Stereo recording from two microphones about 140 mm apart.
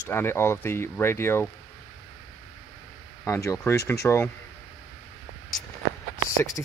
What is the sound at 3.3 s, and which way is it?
Speech, 20° left (ahead or behind).